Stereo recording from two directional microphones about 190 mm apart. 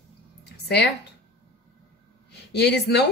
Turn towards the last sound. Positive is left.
turn(degrees=60)  # may be behind; listen again after turning